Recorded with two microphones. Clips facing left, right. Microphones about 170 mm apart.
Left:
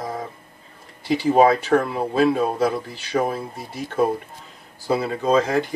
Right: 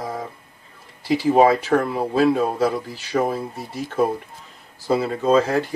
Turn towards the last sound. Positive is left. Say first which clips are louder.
# right 1 dB
turn(degrees=0)  # may be behind; listen again after turning